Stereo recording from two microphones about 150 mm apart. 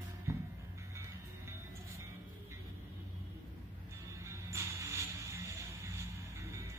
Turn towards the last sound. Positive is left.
turn(degrees=-20)  # may be behind; listen again after turning